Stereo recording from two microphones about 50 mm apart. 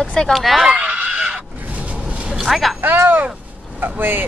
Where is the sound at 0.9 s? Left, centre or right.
Right.